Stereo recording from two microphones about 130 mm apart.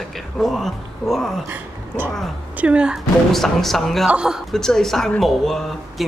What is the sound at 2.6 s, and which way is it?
A woman's voice, 10° right (ahead or behind).